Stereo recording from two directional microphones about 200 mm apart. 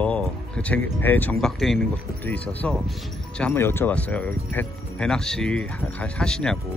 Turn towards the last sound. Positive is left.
turn(degrees=5)  # may be behind; listen again after turning